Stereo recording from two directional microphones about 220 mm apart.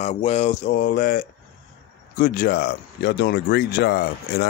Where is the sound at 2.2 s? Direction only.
45° left (ahead or behind).